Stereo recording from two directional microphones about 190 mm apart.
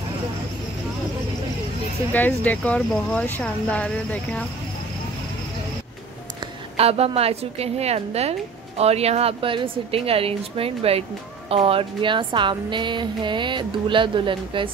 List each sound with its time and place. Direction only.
2.1 s speech: 10° left (ahead or behind)
6.8 s a woman's voice: 30° right (ahead or behind)